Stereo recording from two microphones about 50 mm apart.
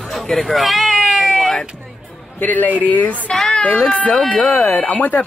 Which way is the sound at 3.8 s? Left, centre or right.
Left.